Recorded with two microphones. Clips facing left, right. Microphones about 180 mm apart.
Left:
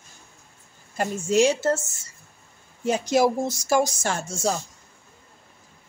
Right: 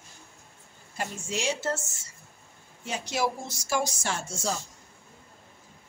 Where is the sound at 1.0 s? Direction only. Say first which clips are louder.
Left 13 dB; 45° left (ahead or behind).